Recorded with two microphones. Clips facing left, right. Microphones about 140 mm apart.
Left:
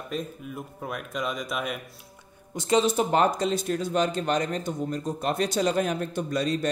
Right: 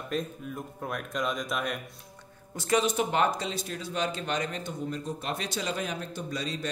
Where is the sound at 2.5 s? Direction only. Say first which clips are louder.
Left 4 dB; 25° left (ahead or behind); by 6.5 s 55° left (ahead or behind).